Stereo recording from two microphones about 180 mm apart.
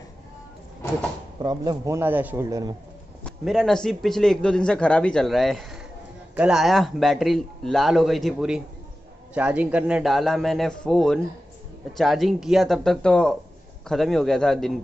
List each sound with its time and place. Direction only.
1.4 s a man's voice: 25° right (ahead or behind)
3.3 s a man's voice: centre (ahead or behind)